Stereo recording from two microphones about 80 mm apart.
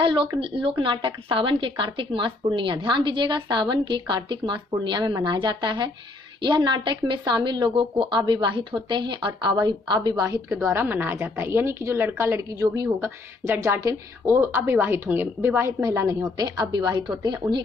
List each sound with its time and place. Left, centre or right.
0.0 s a woman's voice: right
10.6 s a woman's voice: right
16.2 s a woman's voice: right